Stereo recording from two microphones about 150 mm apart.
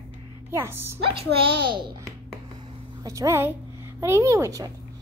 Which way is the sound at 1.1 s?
35° right (ahead or behind).